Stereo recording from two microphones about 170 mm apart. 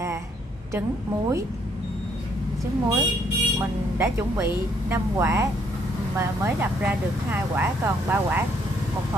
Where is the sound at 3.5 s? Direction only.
15° right (ahead or behind).